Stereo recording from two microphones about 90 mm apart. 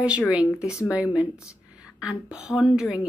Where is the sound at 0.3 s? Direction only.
10° right (ahead or behind).